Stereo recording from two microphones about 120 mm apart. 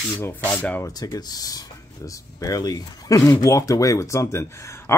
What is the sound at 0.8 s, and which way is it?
Speech, 30° left (ahead or behind).